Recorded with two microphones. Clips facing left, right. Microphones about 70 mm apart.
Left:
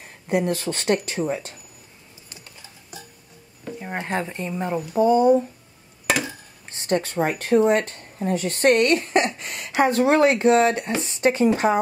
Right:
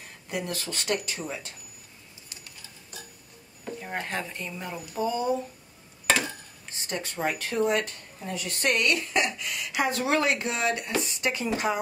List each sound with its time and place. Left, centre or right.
0.3 s speech: left
3.8 s speech: left
6.9 s speech: left